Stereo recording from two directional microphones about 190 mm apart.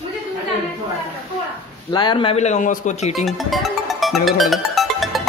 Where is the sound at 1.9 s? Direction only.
25° left (ahead or behind); by 3.2 s 40° left (ahead or behind).